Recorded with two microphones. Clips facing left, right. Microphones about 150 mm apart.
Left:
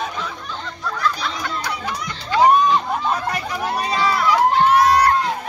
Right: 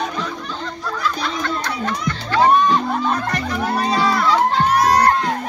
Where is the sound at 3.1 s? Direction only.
10° left (ahead or behind).